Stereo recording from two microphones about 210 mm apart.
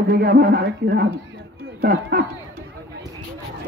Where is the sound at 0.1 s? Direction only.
45° right (ahead or behind).